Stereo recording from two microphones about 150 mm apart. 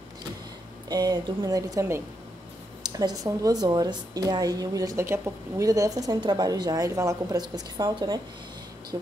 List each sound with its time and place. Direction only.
0.8 s a woman's voice: 25° right (ahead or behind)
2.8 s a sound: 25° right (ahead or behind)
3.3 s a woman's voice: 25° right (ahead or behind)